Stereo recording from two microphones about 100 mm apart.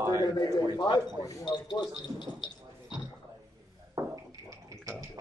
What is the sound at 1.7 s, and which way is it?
Speech, 50° left (ahead or behind).